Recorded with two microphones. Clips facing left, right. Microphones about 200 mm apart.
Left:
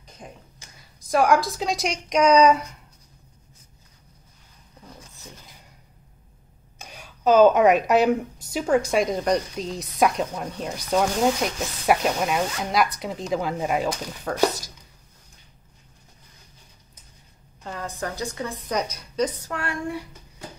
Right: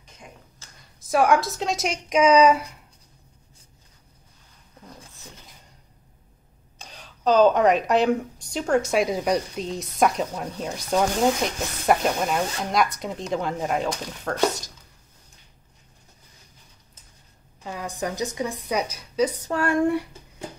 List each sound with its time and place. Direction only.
0.6 s a sound: 15° left (ahead or behind)
1.0 s a woman's voice: centre (ahead or behind)
6.8 s a woman's voice: 10° left (ahead or behind)
17.6 s a woman's voice: 10° right (ahead or behind)
18.7 s a woman's voice: 5° right (ahead or behind)
19.5 s a sound: 45° right (ahead or behind)